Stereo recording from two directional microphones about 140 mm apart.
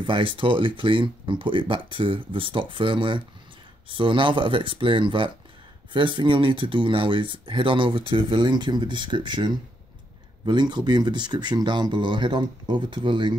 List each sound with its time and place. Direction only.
0.0 s speech: 35° right (ahead or behind)